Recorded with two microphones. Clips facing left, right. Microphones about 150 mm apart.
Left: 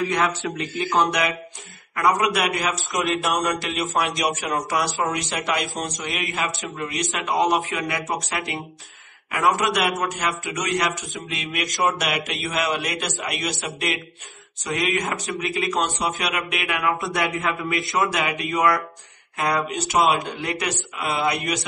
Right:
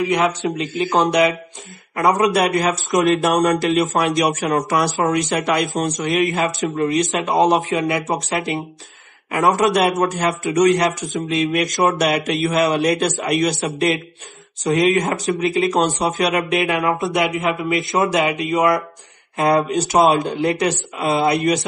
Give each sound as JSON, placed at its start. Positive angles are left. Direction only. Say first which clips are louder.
{"t": 0.0, "sound": "speech", "louder": "right 5 dB", "side_deg": -15}
{"t": 5.4, "sound": "speech", "louder": "right 7 dB", "side_deg": -45}